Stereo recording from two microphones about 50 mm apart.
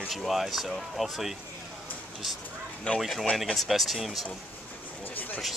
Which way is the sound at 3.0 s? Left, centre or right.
Centre.